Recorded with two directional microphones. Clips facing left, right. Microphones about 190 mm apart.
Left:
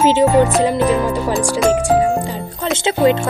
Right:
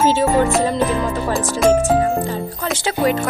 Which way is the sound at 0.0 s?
15° left (ahead or behind).